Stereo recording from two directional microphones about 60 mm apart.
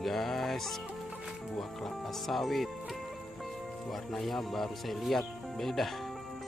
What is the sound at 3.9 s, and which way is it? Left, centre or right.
Speech, centre.